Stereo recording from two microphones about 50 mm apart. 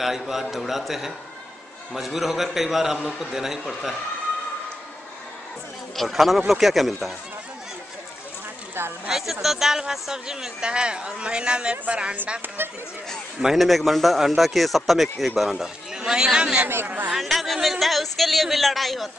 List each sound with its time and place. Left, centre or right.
0.3 s speech: centre
5.9 s speech: centre
9.1 s a woman's voice: centre; by 12.2 s right
13.6 s speech: centre
15.6 s speech: centre
16.8 s speech: right
17.1 s speech: centre